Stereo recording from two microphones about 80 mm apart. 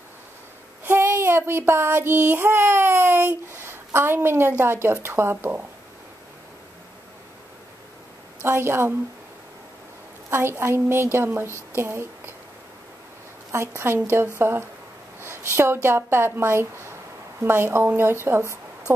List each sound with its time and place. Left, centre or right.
0.8 s child singing: right
8.4 s a woman's voice: right
10.3 s a woman's voice: right
13.5 s a woman's voice: right
15.1 s a sound: right
15.5 s a woman's voice: right